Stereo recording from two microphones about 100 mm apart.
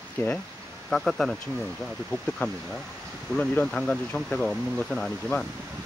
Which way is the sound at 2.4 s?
20° left (ahead or behind).